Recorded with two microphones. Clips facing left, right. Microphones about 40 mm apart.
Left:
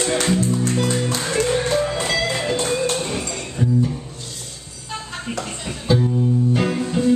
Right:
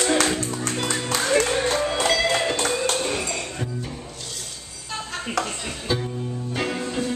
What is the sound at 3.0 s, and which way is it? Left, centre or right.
Music, centre.